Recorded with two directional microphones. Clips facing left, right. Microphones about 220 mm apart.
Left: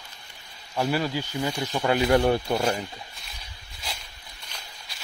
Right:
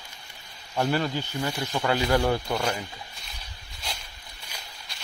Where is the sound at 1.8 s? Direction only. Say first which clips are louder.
Left 3 dB; 20° left (ahead or behind).